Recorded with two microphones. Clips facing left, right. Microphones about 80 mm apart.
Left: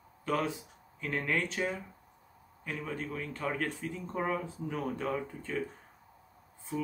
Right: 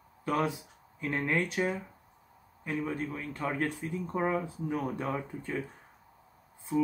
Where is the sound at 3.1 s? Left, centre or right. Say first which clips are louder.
Right 1 dB; centre.